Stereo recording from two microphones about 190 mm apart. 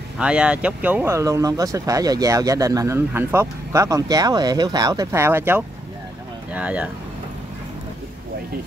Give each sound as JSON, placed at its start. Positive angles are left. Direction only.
{"t": 0.2, "sound": "speech", "side_deg": -5}